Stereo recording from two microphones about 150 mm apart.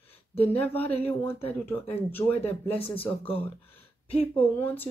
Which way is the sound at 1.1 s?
15° left (ahead or behind).